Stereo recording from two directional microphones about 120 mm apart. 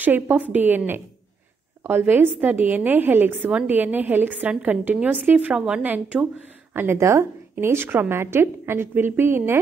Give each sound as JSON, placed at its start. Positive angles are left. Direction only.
{"t": 0.0, "sound": "a woman's voice", "side_deg": -15}